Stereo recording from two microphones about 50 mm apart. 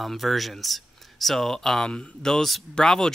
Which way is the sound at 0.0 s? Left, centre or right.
Centre.